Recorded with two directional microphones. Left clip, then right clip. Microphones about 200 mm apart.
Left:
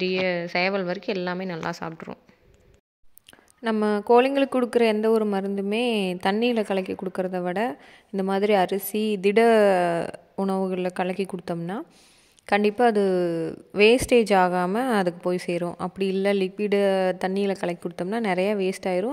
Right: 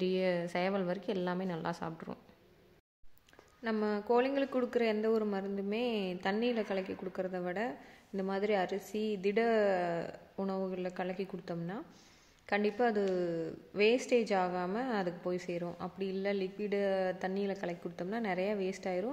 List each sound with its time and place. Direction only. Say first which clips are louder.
0.0 s a woman's voice: left 8 dB; 15° left (ahead or behind)
3.6 s speech: left 11 dB; 40° left (ahead or behind)